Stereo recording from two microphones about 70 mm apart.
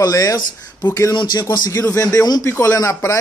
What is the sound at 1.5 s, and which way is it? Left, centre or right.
Speech, left.